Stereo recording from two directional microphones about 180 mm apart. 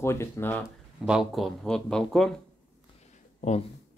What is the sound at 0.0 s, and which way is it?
Speech, 15° left (ahead or behind).